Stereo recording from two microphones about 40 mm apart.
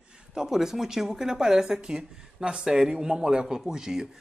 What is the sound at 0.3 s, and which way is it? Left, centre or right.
Speech, centre.